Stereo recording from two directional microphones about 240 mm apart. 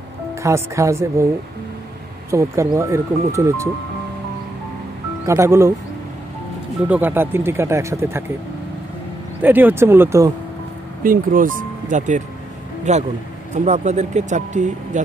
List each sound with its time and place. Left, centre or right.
0.3 s speech: centre
2.3 s speech: centre
5.2 s speech: centre
6.9 s speech: centre
9.4 s speech: centre
11.1 s speech: right